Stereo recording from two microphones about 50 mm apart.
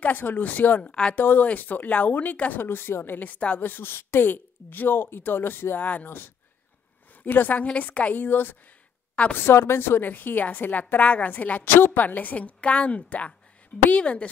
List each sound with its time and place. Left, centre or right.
0.0 s a woman's voice: left
0.8 s a woman's voice: centre
1.1 s a woman's voice: left
2.6 s speech: left
3.2 s a woman's voice: left
3.5 s speech: left
5.8 s a woman's voice: left
6.0 s a woman's voice: left
8.2 s a woman's voice: left
11.6 s a woman's voice: left